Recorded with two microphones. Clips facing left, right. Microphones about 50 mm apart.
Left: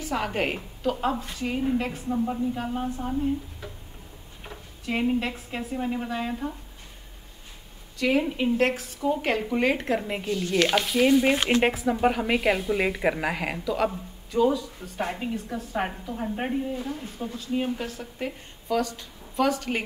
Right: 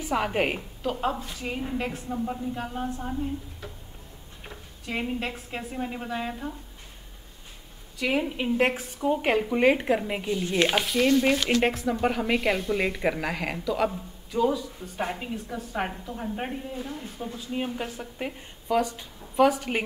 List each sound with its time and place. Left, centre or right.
0.0 s a woman's voice: centre
4.5 s a sound: centre
5.3 s a woman's voice: centre
8.0 s speech: centre
10.3 s speech: centre
10.9 s speech: centre
11.3 s a woman's voice: left
11.6 s a woman's voice: centre
17.3 s a woman's voice: centre
17.7 s speech: centre